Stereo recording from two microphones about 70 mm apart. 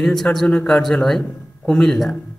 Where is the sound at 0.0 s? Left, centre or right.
Centre.